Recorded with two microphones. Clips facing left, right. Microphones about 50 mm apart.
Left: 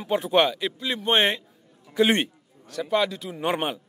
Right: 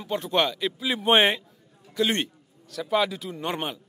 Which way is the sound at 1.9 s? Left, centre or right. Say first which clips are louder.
Left 4 dB; centre.